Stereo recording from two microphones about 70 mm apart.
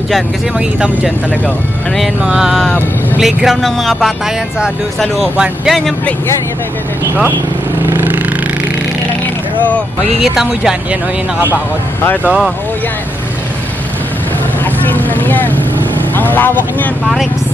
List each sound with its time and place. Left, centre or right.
2.2 s a sound: centre
3.2 s speech: centre
5.2 s speech: centre
10.2 s speech: centre
14.6 s vehicle: left
16.2 s speech: left